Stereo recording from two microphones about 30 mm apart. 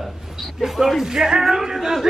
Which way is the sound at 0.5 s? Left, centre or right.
Centre.